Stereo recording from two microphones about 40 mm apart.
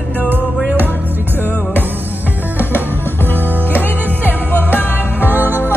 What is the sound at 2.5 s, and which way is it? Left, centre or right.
Music, left.